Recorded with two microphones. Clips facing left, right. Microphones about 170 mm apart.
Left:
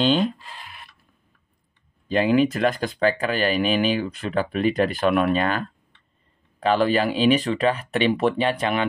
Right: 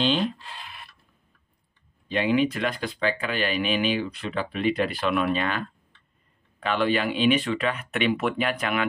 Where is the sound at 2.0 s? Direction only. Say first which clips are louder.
Left 4 dB; 40° left (ahead or behind).